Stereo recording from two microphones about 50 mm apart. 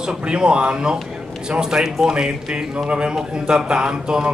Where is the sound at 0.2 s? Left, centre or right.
Centre.